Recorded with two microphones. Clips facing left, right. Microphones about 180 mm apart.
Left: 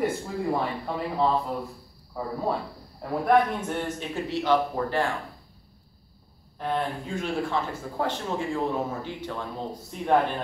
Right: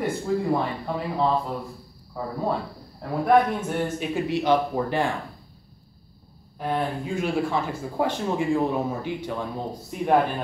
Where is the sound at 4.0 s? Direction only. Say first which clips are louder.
Right 4 dB; 15° right (ahead or behind).